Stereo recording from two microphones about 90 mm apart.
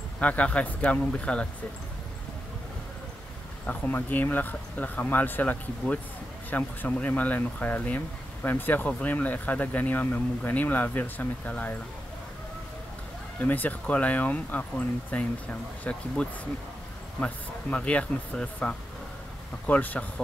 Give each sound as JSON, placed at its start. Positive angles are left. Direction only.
{"t": 0.2, "sound": "speech", "side_deg": 15}
{"t": 3.6, "sound": "speech", "side_deg": 20}
{"t": 13.4, "sound": "speech", "side_deg": 20}